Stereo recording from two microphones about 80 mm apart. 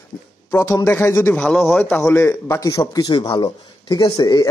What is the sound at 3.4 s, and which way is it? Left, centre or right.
Speech, left.